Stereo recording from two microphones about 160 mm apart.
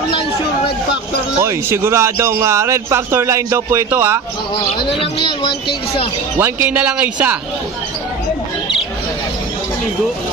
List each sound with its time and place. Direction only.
1.4 s a man's voice: 15° right (ahead or behind)
5.0 s speech: 30° left (ahead or behind)
6.4 s a man's voice: 10° right (ahead or behind)